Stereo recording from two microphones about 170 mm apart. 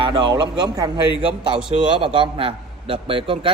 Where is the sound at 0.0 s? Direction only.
25° right (ahead or behind).